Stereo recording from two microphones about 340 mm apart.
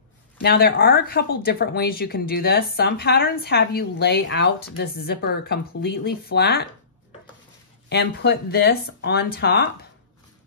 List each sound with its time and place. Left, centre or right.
0.4 s speech: left
7.9 s speech: left